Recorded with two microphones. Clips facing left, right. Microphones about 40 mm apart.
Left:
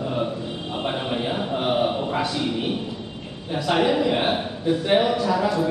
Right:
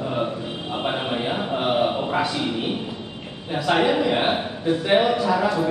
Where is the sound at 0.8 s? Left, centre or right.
Centre.